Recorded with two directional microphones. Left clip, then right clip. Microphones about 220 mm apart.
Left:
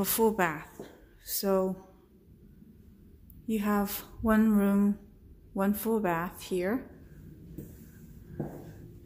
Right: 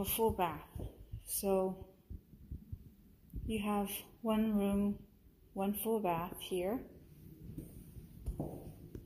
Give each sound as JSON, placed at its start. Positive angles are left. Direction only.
{"t": 0.0, "sound": "speech", "side_deg": 30}
{"t": 3.5, "sound": "speech", "side_deg": 20}